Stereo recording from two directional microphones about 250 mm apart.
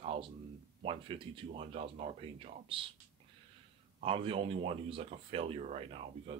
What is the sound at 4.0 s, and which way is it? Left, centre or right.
Speech, right.